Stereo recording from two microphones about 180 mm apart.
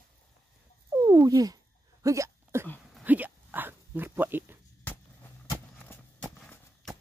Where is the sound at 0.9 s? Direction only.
20° right (ahead or behind).